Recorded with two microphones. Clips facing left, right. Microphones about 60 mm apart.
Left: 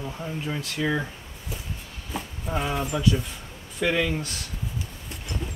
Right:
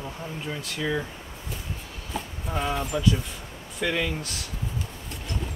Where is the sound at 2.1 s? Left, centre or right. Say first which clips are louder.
Left 1 dB; centre.